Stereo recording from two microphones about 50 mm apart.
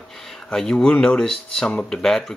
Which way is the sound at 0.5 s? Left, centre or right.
Centre.